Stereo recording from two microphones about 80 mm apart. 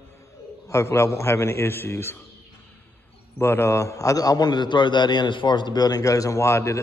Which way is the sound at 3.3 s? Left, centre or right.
Left.